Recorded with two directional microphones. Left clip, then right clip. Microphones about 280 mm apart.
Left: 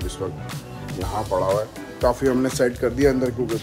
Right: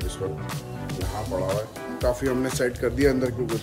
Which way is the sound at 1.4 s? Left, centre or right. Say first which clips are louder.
Left 5 dB; centre.